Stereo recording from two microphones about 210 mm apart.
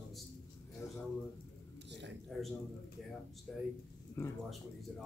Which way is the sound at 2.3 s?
Centre (ahead or behind).